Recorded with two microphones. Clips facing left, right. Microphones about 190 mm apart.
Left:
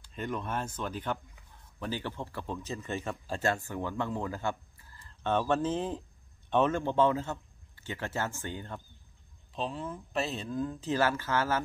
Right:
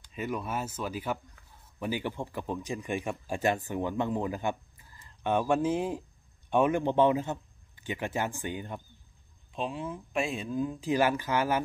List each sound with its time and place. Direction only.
0.1 s speech: 5° right (ahead or behind)